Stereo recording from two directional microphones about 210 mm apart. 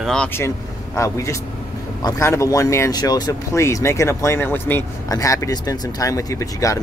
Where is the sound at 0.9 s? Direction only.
15° left (ahead or behind).